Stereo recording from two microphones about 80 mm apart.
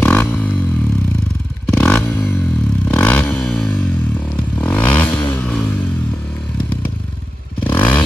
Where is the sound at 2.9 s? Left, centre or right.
Centre.